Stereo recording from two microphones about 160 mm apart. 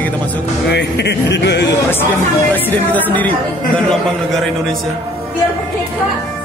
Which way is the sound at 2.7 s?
10° left (ahead or behind).